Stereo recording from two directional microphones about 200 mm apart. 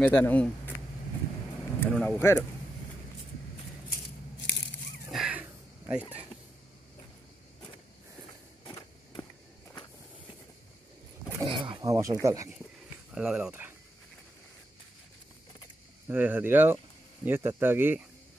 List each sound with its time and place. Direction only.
0.0 s a man's voice: 10° left (ahead or behind)
1.8 s a man's voice: 10° left (ahead or behind)
5.1 s a sound: 5° right (ahead or behind)
11.3 s speech: 25° right (ahead or behind); by 13.7 s 10° right (ahead or behind)
16.1 s speech: 10° right (ahead or behind)